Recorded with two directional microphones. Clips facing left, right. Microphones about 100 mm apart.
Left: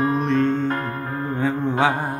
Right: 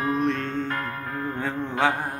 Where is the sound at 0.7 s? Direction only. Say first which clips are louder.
Left 5 dB; 30° left (ahead or behind).